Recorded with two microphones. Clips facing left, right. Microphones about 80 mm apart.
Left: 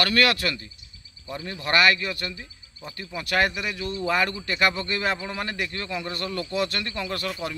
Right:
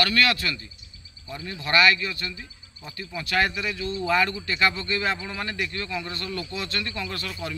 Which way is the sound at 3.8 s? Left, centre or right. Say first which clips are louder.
Right 1 dB; left.